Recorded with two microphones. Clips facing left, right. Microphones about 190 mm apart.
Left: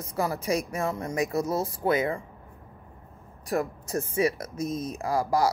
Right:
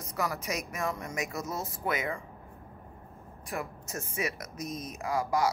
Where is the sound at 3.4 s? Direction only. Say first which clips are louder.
Left 9 dB; 35° left (ahead or behind).